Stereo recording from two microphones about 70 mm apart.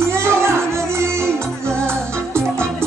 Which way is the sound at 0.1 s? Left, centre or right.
Right.